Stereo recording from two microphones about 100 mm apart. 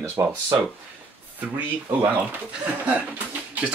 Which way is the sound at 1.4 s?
15° right (ahead or behind).